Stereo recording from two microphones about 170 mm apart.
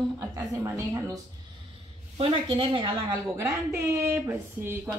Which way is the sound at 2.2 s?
30° right (ahead or behind).